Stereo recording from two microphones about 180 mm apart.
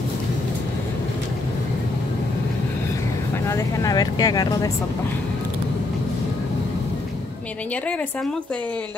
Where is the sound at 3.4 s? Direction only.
15° left (ahead or behind).